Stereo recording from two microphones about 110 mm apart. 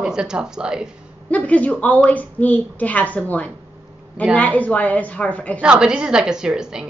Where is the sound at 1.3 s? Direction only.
15° left (ahead or behind).